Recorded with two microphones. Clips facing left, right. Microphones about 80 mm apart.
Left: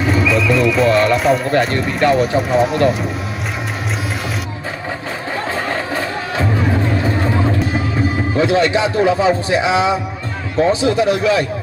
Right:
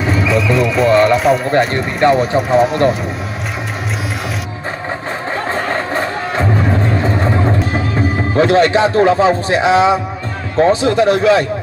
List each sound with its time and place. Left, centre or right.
0.3 s horse: centre
0.8 s a sound: centre
1.7 s speech: right
2.3 s speech: centre
5.5 s music: right
8.4 s speech: right